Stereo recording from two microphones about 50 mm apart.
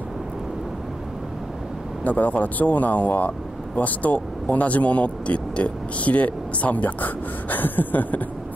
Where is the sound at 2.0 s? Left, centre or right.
Left.